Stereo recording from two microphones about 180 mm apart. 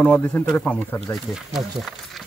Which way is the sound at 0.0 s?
10° left (ahead or behind).